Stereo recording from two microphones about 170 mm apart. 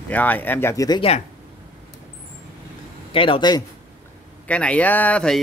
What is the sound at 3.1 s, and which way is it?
Speech, 30° left (ahead or behind).